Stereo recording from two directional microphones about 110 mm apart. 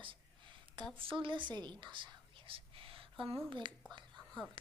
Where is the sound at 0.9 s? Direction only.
50° right (ahead or behind).